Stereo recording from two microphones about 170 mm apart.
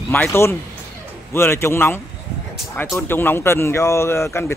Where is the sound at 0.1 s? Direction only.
15° left (ahead or behind).